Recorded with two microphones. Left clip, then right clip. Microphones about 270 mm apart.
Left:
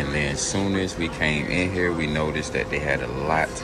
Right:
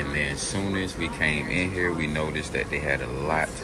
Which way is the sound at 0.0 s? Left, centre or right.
Centre.